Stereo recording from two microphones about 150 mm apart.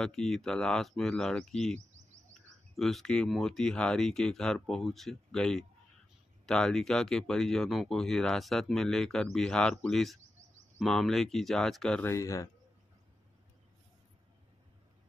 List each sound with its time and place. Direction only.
0.0 s speech: 5° left (ahead or behind)
12.1 s a man's voice: 20° left (ahead or behind)